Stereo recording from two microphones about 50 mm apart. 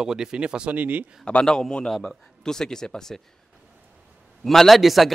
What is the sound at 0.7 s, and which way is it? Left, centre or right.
Speech, right.